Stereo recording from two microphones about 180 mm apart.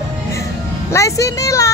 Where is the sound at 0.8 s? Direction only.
15° left (ahead or behind).